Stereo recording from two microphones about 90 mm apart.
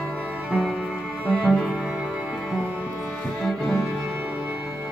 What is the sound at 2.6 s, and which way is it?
Music, 10° right (ahead or behind).